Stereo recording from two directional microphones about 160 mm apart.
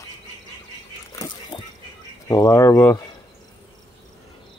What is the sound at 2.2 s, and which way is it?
Speech, 20° left (ahead or behind).